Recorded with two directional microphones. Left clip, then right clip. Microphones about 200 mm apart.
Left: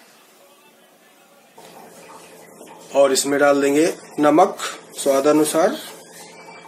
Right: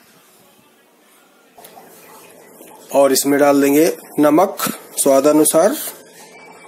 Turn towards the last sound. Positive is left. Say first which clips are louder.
# right 4 dB
turn(degrees=-50)  # may be behind; listen again after turning